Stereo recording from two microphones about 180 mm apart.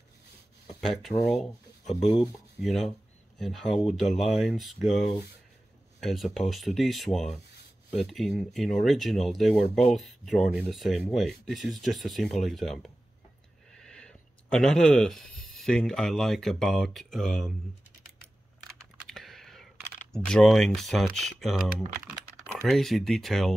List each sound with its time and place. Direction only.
0.7 s speech: centre (ahead or behind)
19.0 s a sound: centre (ahead or behind)
21.4 s speech: centre (ahead or behind)